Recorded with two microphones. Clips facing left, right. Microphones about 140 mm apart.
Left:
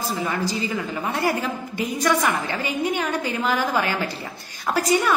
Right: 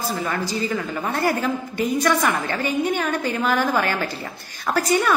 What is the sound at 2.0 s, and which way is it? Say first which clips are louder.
A woman's voice: left 3 dB; 20° left (ahead or behind).